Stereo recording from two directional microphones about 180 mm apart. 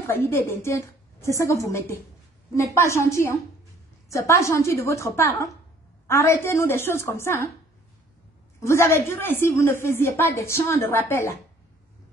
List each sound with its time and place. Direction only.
0.0 s speech: 15° left (ahead or behind)
8.5 s speech: 15° left (ahead or behind)